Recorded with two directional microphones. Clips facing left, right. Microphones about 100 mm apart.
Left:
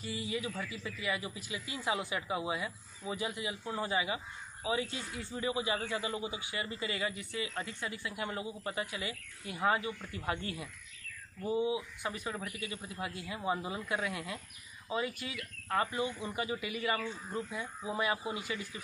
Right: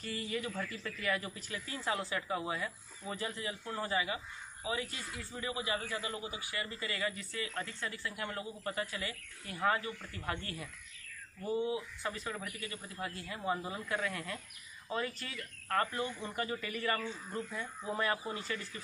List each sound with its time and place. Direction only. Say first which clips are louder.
0.0 s a man's voice: left 1 dB; 5° left (ahead or behind)